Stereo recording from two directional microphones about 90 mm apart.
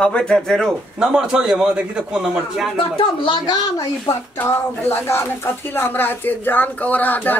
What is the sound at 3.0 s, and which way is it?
Speech, 70° left (ahead or behind).